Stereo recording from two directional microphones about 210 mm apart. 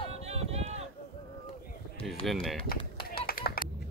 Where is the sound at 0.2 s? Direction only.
30° right (ahead or behind).